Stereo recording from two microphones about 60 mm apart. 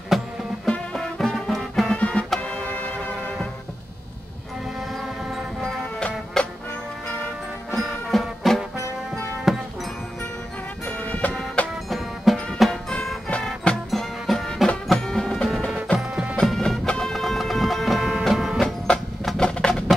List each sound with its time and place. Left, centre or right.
0.1 s music: centre
0.9 s music: centre
2.0 s music: centre
5.6 s music: centre
7.7 s music: centre
10.9 s music: left
11.7 s music: centre
13.8 s music: centre
15.9 s music: left
16.3 s music: centre
16.8 s music: centre
17.1 s music: centre
18.6 s music: centre